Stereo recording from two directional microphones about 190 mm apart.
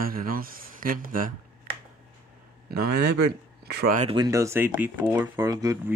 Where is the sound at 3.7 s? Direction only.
60° right (ahead or behind).